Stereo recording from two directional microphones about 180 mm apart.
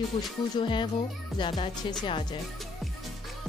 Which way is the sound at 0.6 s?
25° left (ahead or behind).